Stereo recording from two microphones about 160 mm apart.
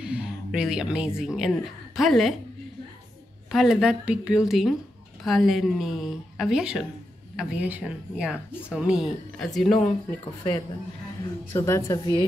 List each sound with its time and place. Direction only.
0.0 s speech: 5° right (ahead or behind)
3.5 s speech: 5° right (ahead or behind)
11.5 s a woman's voice: 15° left (ahead or behind)